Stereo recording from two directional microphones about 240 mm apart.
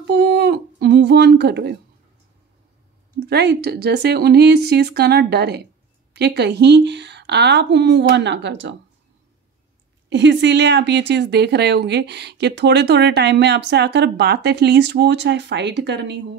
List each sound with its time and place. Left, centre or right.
0.0 s a sound: right
3.2 s a woman's voice: right
10.0 s a woman's voice: right